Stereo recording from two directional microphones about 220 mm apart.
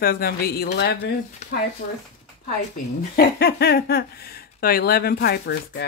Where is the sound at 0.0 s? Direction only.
45° left (ahead or behind).